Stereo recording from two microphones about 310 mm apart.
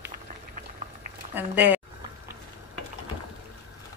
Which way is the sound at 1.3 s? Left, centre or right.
Centre.